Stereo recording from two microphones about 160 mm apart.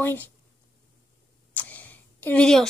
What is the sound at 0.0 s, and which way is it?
Speech, 15° left (ahead or behind).